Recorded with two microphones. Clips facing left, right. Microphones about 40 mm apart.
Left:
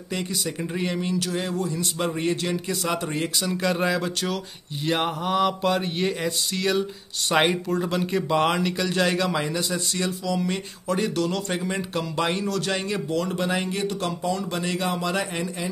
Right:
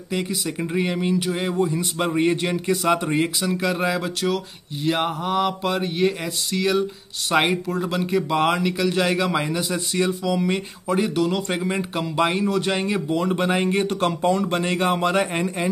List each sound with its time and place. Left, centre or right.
0.1 s speech: centre
4.8 s mantra: centre
9.3 s speech: centre; by 15.7 s right